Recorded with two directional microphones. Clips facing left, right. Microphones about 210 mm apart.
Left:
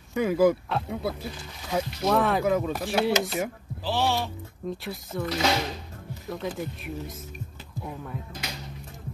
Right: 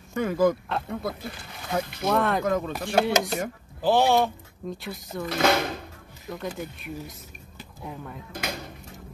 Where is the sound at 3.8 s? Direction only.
50° right (ahead or behind).